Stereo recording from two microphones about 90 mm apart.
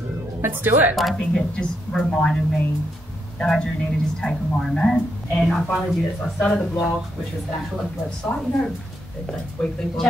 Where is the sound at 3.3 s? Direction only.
10° left (ahead or behind).